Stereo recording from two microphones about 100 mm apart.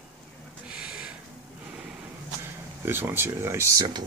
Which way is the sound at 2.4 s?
20° right (ahead or behind).